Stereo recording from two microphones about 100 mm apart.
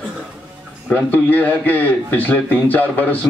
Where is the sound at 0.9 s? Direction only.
15° left (ahead or behind).